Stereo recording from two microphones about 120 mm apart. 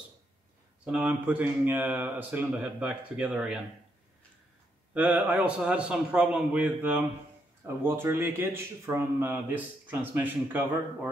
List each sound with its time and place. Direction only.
1.0 s speech: 15° right (ahead or behind)
4.9 s speech: 15° right (ahead or behind)